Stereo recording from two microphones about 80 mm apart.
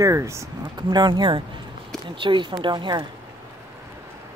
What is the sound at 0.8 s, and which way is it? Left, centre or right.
Speech, right.